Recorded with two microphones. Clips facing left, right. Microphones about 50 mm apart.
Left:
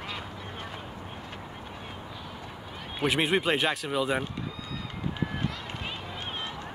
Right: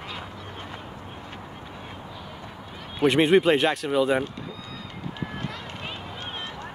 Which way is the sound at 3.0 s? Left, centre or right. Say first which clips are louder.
Right 7 dB; centre.